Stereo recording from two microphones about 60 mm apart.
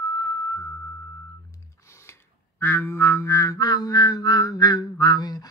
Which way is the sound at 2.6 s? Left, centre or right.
Left.